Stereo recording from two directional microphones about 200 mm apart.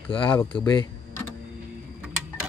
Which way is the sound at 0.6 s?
20° left (ahead or behind).